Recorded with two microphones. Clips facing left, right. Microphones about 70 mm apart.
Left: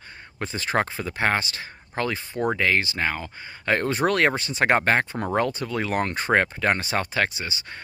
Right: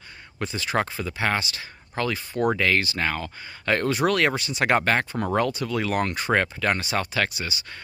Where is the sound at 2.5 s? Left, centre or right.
Left.